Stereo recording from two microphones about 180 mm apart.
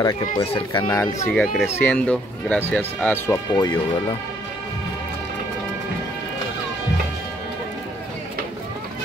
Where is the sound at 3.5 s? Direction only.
25° left (ahead or behind).